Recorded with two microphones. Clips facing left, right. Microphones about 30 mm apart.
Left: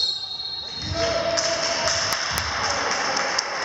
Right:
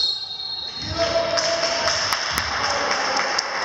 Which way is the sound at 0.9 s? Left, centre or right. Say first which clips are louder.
Right 2 dB; centre.